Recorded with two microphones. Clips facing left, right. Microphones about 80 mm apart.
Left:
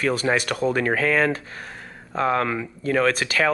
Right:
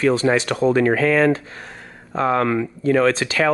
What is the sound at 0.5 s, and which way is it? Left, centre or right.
Speech, centre.